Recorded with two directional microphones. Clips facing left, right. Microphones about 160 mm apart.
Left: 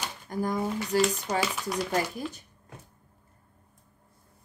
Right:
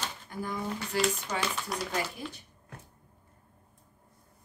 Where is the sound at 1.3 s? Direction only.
35° left (ahead or behind).